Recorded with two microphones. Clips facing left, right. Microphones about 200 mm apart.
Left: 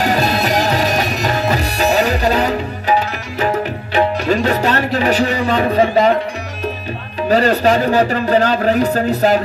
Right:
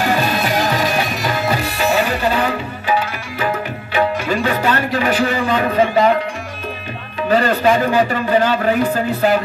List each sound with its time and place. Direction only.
0.0 s music: 40° left (ahead or behind)
7.2 s speech: 40° left (ahead or behind)